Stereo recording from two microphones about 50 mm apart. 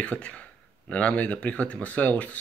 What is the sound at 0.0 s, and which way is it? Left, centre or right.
Speech, left.